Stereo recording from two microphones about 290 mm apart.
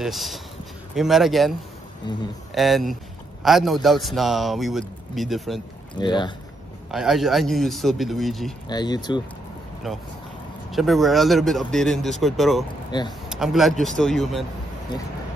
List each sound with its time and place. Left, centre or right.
0.0 s a man's voice: centre
2.1 s speech: centre
2.5 s a man's voice: centre
5.9 s speech: centre
6.9 s a man's voice: centre
8.6 s speech: centre
9.8 s a man's voice: centre